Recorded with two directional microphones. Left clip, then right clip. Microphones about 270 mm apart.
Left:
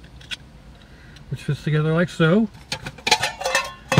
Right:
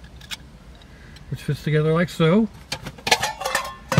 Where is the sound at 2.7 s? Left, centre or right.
Left.